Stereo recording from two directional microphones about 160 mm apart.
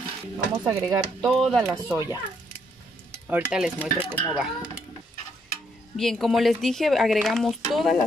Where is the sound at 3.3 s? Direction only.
10° right (ahead or behind).